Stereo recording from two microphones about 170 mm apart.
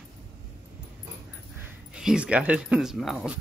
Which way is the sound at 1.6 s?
5° right (ahead or behind).